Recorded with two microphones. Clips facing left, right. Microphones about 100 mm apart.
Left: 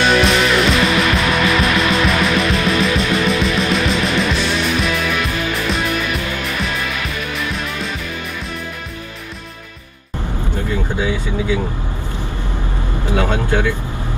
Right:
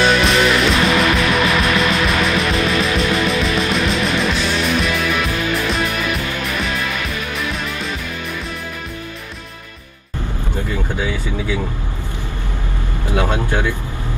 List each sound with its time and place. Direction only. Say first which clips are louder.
0.0 s music: even; centre (ahead or behind)
13.1 s vehicle: left 1 dB; 15° right (ahead or behind)